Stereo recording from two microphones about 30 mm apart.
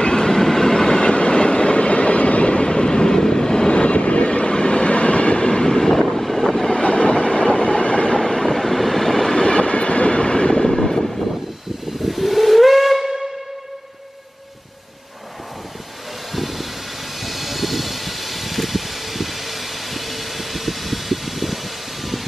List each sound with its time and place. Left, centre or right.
0.0 s train: left
5.7 s vehicle: centre
6.8 s train: left
8.2 s train: centre
9.4 s train: left
10.8 s vehicle: centre
12.0 s steam whistle: centre
16.3 s vehicle: centre